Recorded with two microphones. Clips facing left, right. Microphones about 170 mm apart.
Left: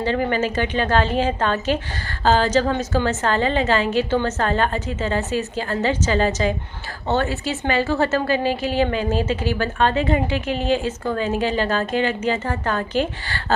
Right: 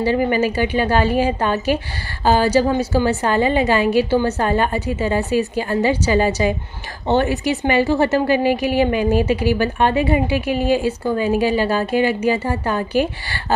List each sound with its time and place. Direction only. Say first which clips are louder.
0.0 s a woman's voice: right 4 dB; 10° right (ahead or behind)